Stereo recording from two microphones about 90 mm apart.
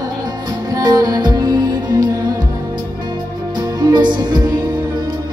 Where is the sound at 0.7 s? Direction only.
45° right (ahead or behind).